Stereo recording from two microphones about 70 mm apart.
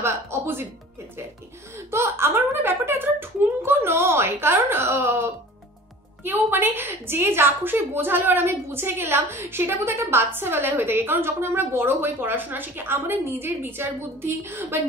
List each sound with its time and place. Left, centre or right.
0.0 s music: right
1.9 s a child's voice: right